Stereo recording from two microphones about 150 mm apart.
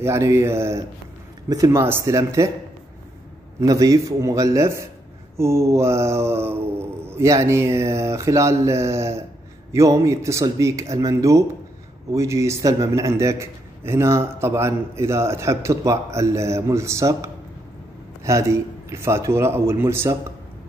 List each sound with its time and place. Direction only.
0.0 s a man's voice: 20° right (ahead or behind)
3.6 s a man's voice: 20° right (ahead or behind)